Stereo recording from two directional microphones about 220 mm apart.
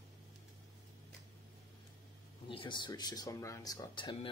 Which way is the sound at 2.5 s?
20° left (ahead or behind).